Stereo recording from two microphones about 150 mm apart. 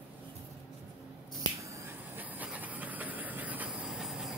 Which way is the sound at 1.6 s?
20° right (ahead or behind).